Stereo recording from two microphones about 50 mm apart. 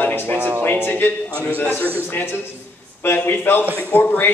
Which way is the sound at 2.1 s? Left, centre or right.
Left.